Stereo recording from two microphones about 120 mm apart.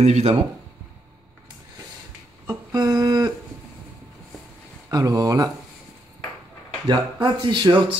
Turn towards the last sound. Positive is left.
turn(degrees=-40)  # may be behind; listen again after turning